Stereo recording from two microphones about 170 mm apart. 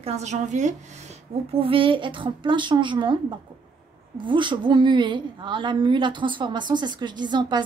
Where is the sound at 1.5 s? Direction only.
30° right (ahead or behind).